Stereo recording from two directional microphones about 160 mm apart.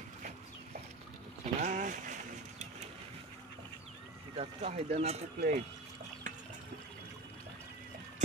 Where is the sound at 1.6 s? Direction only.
50° right (ahead or behind).